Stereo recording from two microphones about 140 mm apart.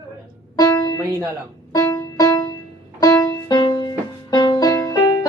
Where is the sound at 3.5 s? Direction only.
30° left (ahead or behind).